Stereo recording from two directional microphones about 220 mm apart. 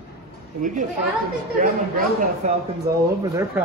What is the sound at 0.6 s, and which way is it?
Speech, 35° right (ahead or behind).